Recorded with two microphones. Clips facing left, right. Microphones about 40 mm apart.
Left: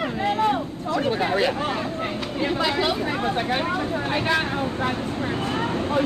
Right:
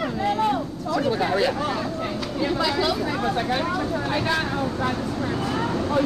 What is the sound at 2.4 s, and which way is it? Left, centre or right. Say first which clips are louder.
Speech: even; left.